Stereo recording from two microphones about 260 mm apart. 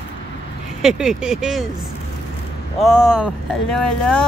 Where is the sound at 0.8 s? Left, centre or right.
Centre.